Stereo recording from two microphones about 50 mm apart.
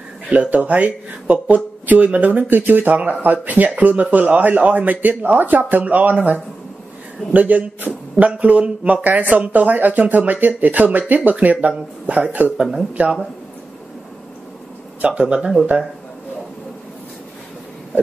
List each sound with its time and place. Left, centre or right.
0.3 s speech: right
7.3 s speech: right
15.0 s speech: right